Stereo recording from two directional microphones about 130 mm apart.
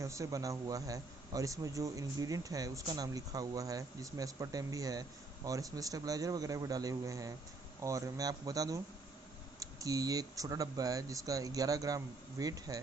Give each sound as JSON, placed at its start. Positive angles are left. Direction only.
{"t": 0.0, "sound": "a man's voice", "side_deg": -25}